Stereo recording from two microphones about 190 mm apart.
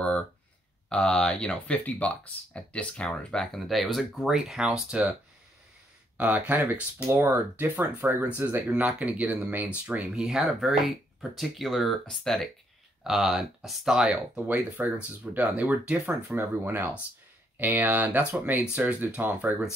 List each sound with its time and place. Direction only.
0.8 s speech: 5° left (ahead or behind)
6.1 s speech: 10° right (ahead or behind)